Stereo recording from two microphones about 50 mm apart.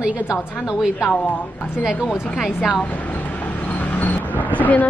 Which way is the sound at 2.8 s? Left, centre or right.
Left.